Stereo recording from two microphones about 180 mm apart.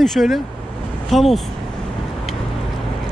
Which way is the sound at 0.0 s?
Centre (ahead or behind).